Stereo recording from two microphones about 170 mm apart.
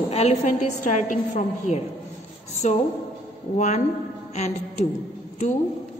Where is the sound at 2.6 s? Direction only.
45° left (ahead or behind).